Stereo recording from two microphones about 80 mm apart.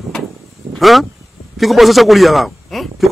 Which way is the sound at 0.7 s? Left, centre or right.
Centre.